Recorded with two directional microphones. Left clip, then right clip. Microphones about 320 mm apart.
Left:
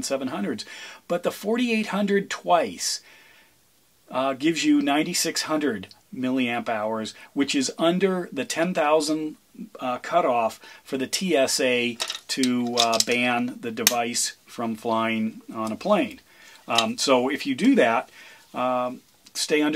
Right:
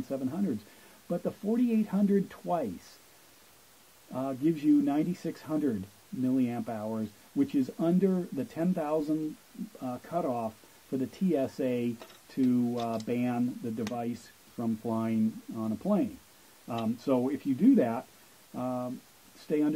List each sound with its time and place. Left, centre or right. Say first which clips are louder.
0.1 s speech: left 5 dB; centre
4.1 s speech: left 7 dB; centre
5.1 s mechanisms: left 10 dB; centre
6.2 s speech: left 6 dB; centre
12.7 s mechanisms: left 12 dB; centre
14.6 s speech: left 9 dB; left
16.6 s speech: left 11 dB; centre